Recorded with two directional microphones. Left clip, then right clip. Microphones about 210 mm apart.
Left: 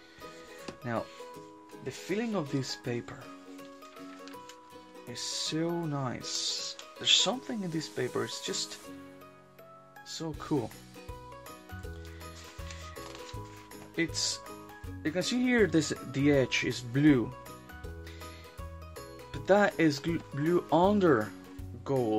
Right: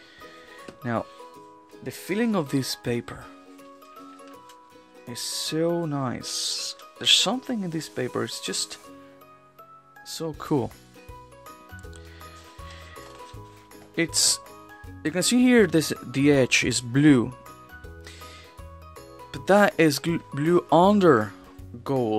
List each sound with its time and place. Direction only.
1.9 s speech: 50° right (ahead or behind)
5.0 s speech: 45° right (ahead or behind)
10.0 s speech: 50° right (ahead or behind)
13.9 s speech: 50° right (ahead or behind)
19.3 s speech: 45° right (ahead or behind)